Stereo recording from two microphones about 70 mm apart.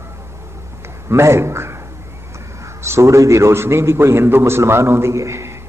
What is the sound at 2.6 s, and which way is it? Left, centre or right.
A man's voice, right.